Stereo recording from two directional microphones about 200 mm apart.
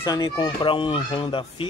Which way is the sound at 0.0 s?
20° left (ahead or behind).